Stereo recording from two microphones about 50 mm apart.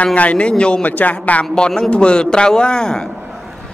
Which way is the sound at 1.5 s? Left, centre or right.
Centre.